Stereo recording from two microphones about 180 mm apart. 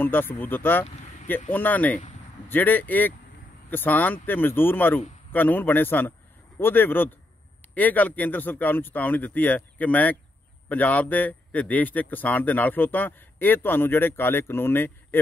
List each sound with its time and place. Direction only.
0.0 s a man's voice: 10° left (ahead or behind)
0.8 s vehicle: 40° left (ahead or behind)
1.5 s a man's voice: 10° left (ahead or behind)